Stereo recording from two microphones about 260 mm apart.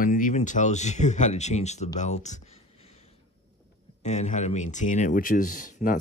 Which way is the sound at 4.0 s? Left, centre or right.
Left.